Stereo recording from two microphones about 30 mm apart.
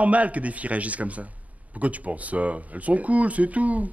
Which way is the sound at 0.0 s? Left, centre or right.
Right.